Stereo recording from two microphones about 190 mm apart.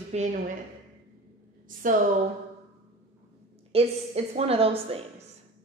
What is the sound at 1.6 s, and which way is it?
Speech, 45° right (ahead or behind).